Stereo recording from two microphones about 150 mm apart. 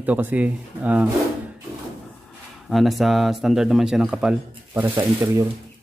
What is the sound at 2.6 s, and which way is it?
Speech, centre (ahead or behind).